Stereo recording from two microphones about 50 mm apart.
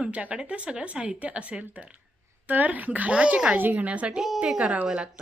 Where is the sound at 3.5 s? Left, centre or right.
Right.